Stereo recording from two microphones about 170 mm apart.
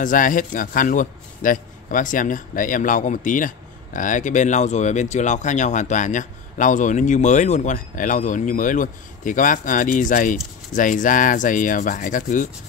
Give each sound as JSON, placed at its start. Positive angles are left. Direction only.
{"t": 0.0, "sound": "a man's voice", "side_deg": 50}